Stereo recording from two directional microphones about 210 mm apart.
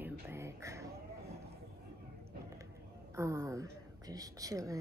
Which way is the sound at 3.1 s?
15° right (ahead or behind).